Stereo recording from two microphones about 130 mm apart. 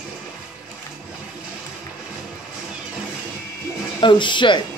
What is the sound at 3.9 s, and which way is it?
Speech, 40° left (ahead or behind).